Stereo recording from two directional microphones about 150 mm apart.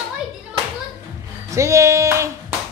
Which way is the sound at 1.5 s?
20° right (ahead or behind).